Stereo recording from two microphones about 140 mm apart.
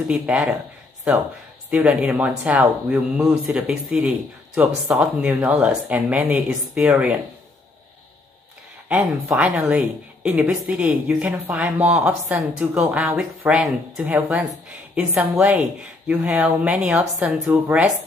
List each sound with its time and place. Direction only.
0.1 s a woman's voice: 5° right (ahead or behind)
1.7 s a woman's voice: 5° right (ahead or behind)
8.8 s a woman's voice: 10° right (ahead or behind)
17.5 s speech: 20° right (ahead or behind)